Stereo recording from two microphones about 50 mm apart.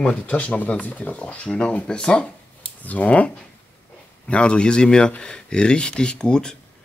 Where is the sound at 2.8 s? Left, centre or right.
Left.